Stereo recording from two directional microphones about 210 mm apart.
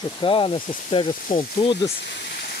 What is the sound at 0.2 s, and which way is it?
Speech, 25° left (ahead or behind).